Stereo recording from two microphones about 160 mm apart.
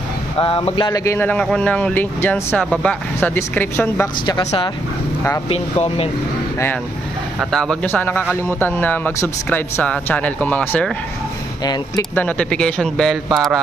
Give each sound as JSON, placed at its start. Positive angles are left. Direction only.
{"t": 0.4, "sound": "speech", "side_deg": 30}
{"t": 5.5, "sound": "speech", "side_deg": 40}
{"t": 7.5, "sound": "speech", "side_deg": 5}
{"t": 11.6, "sound": "speech", "side_deg": 25}
{"t": 12.2, "sound": "speech", "side_deg": 5}